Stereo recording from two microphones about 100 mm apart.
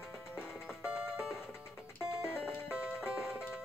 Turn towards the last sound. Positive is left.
turn(degrees=-10)  # may be behind; listen again after turning